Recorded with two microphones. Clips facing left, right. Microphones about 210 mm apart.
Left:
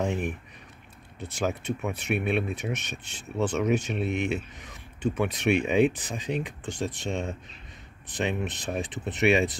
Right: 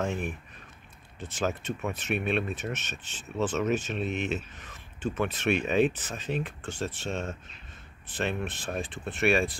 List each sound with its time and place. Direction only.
0.0 s speech: 15° left (ahead or behind)